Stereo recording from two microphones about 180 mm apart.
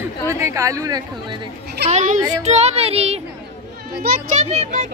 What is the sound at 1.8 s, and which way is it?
Speech, 40° right (ahead or behind).